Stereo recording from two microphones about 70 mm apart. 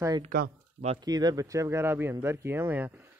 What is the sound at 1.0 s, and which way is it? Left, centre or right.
Speech, right.